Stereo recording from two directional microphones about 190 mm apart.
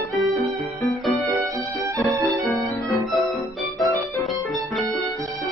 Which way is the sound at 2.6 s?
Centre (ahead or behind).